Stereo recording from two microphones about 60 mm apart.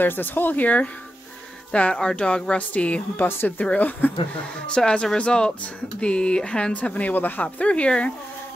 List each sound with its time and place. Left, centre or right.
0.0 s speech: left
3.3 s speech: left
4.6 s speech: centre; by 7.4 s left
7.4 s speech: left